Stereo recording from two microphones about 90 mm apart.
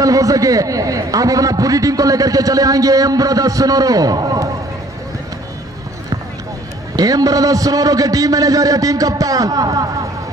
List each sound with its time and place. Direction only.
0.0 s a man's voice: 40° right (ahead or behind)
7.0 s a man's voice: 40° right (ahead or behind)